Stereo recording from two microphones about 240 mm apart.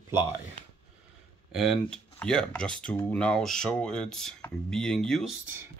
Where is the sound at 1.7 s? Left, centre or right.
Centre.